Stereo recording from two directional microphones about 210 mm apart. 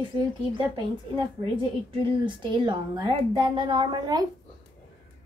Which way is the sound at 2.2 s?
20° right (ahead or behind).